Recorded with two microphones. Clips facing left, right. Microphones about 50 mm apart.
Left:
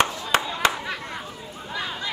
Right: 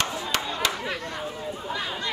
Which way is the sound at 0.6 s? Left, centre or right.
Left.